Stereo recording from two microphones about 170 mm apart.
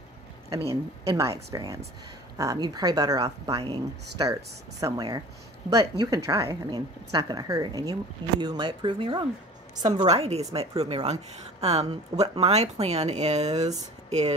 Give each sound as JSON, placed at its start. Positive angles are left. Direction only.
{"t": 0.7, "sound": "a woman's voice", "side_deg": -15}
{"t": 10.0, "sound": "speech", "side_deg": -40}